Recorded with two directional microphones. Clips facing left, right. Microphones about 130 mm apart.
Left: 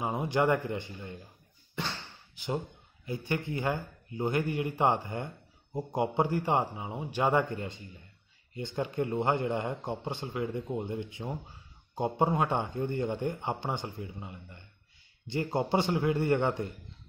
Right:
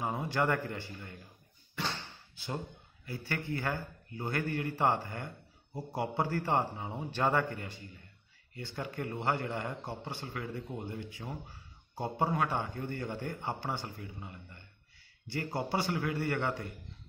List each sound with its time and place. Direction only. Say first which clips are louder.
0.0 s a man's voice: left 4 dB; 20° left (ahead or behind)
1.8 s slam: left 1 dB; 20° left (ahead or behind)
2.3 s a sound: left 6 dB; 15° left (ahead or behind)
3.1 s a man's voice: left 4 dB; 20° left (ahead or behind)